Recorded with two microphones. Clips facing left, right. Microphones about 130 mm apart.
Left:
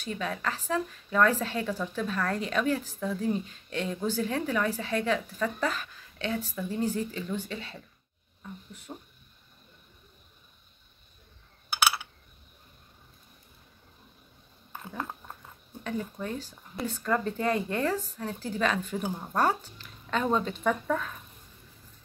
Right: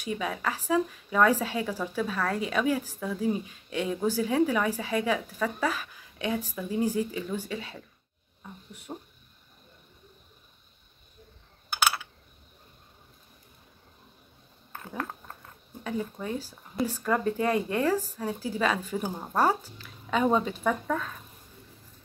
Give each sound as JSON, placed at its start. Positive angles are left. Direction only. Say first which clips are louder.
{"t": 0.0, "sound": "a woman's voice", "louder": "right 2 dB", "side_deg": -10}
{"t": 8.9, "sound": "speech", "louder": "right 3 dB", "side_deg": -30}
{"t": 14.7, "sound": "a sound", "louder": "right 1 dB", "side_deg": 10}
{"t": 15.8, "sound": "a woman's voice", "louder": "right 1 dB", "side_deg": -10}